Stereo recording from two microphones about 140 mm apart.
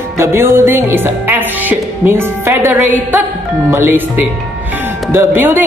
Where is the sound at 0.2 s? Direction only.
20° right (ahead or behind).